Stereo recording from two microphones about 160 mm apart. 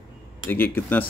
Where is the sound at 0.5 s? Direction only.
10° left (ahead or behind).